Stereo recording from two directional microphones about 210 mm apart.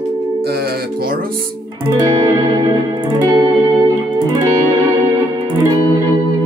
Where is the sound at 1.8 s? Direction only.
20° right (ahead or behind).